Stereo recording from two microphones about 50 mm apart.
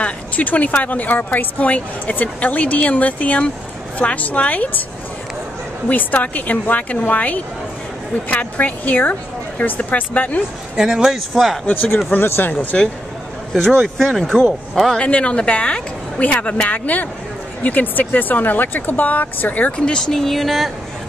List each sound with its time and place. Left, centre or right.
0.0 s speech: left
5.9 s speech: left
10.8 s speech: centre
11.6 s speech: left
12.7 s a man's voice: centre
15.0 s a woman's voice: left
19.8 s speech: centre